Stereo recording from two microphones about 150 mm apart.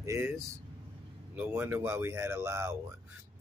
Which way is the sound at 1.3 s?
10° right (ahead or behind).